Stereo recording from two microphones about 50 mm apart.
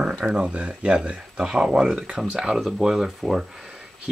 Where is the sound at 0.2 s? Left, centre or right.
Right.